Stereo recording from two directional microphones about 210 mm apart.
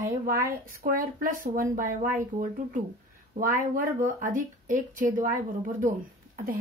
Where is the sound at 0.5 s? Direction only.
40° right (ahead or behind).